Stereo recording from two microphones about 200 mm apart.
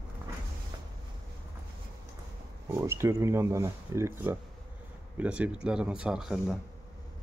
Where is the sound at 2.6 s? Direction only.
10° right (ahead or behind).